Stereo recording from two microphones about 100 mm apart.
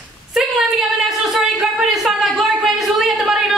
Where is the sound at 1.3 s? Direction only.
Centre (ahead or behind).